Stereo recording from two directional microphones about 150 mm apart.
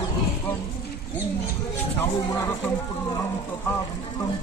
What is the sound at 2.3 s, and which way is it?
Speech, 15° left (ahead or behind).